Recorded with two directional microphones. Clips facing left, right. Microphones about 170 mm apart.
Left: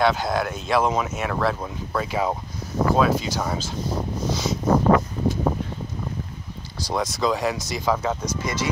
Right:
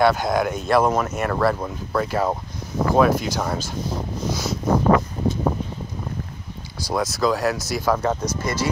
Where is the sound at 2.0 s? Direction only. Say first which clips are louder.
Right 2 dB; 10° left (ahead or behind).